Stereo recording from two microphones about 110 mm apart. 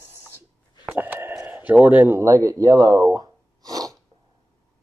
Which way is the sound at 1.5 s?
15° right (ahead or behind).